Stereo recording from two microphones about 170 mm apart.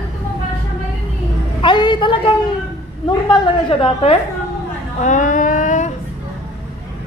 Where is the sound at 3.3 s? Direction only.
30° left (ahead or behind).